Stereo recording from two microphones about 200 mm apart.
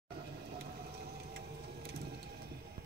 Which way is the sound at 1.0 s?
50° right (ahead or behind).